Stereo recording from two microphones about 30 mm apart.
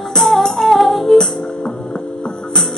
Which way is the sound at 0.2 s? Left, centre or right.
Centre.